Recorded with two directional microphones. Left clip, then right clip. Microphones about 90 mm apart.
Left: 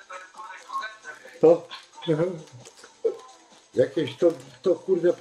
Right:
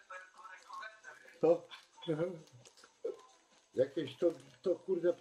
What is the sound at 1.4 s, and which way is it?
Speech, 10° left (ahead or behind).